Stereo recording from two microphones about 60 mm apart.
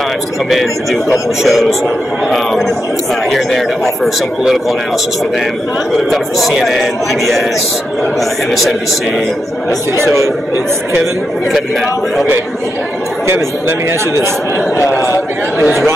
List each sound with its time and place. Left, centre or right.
0.5 s speech: centre
5.9 s speech: centre
8.5 s speech: centre
9.9 s speech: right
13.3 s speech: right
15.6 s speech: centre